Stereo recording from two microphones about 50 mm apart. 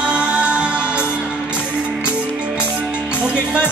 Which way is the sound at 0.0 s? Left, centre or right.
Centre.